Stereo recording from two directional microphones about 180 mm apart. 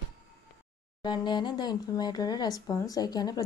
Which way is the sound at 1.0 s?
25° left (ahead or behind).